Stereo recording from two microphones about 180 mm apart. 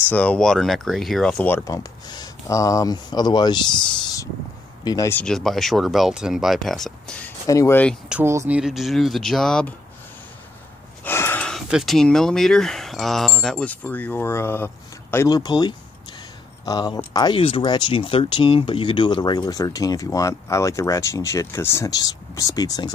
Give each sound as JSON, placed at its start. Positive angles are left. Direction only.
{"t": 0.1, "sound": "speech", "side_deg": 5}
{"t": 5.2, "sound": "speech", "side_deg": 0}
{"t": 7.4, "sound": "speech", "side_deg": 15}
{"t": 8.1, "sound": "speech", "side_deg": -15}
{"t": 11.1, "sound": "speech", "side_deg": 10}